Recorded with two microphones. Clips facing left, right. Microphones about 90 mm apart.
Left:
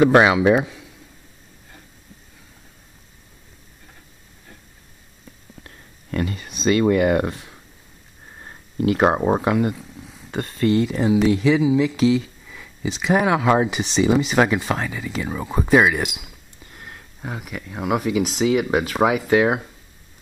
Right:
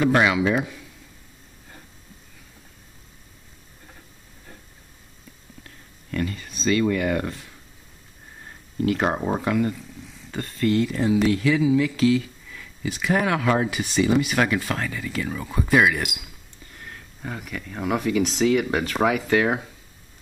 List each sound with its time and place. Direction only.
0.0 s a man's voice: 30° left (ahead or behind)
6.3 s a sound: 50° left (ahead or behind)
7.2 s speech: 20° left (ahead or behind)
10.3 s speech: 55° left (ahead or behind)
10.6 s speech: 15° left (ahead or behind)